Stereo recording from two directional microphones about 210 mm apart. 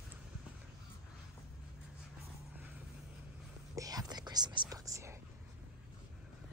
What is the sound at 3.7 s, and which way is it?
Whispering, 15° right (ahead or behind).